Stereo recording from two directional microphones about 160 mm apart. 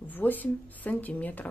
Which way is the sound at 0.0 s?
10° left (ahead or behind).